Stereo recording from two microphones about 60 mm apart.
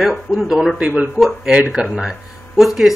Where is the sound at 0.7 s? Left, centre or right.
Right.